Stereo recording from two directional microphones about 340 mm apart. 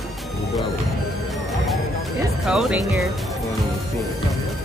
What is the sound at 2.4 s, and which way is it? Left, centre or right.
Speech, centre.